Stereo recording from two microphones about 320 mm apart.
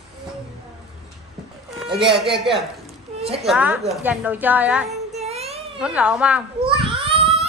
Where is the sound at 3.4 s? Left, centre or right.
Centre.